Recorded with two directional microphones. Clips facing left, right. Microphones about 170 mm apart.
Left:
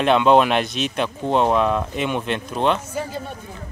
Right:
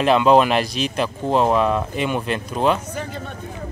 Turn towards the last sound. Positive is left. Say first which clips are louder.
# left 2 dB
turn(degrees=10)  # may be behind; listen again after turning